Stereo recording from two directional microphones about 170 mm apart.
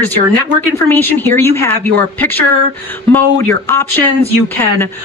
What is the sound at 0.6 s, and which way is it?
Speech, 10° left (ahead or behind).